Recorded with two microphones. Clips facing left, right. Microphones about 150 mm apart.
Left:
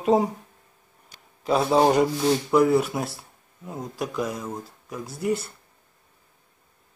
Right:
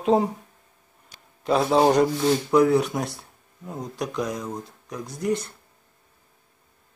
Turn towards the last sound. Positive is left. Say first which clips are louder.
# even
turn(degrees=5)  # may be behind; listen again after turning